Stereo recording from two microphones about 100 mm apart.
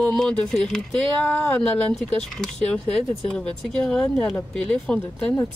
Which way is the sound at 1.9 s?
Centre (ahead or behind).